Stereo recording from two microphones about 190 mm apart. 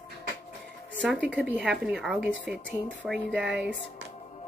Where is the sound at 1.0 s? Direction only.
5° right (ahead or behind).